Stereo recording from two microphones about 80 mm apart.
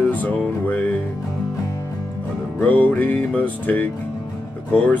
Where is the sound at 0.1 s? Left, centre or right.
Left.